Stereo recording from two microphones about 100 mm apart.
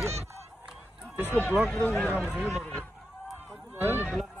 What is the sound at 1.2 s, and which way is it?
Speech, 20° left (ahead or behind).